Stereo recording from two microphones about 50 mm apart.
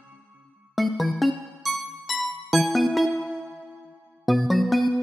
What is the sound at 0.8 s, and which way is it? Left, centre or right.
Music, centre.